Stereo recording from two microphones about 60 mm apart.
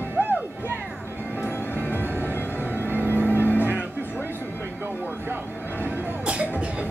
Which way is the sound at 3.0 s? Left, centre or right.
Left.